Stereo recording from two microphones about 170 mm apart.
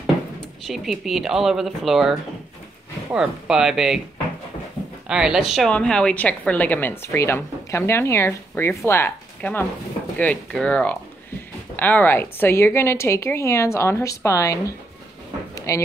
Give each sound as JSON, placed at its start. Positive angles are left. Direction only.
{"t": 0.7, "sound": "speech", "side_deg": 0}
{"t": 5.0, "sound": "a woman's voice", "side_deg": -5}
{"t": 15.5, "sound": "a sound", "side_deg": 20}